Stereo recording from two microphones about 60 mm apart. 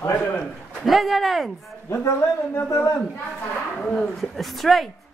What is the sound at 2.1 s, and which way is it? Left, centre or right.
Speech, left.